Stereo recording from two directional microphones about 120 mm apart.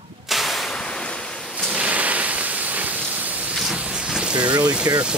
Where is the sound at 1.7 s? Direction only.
10° right (ahead or behind).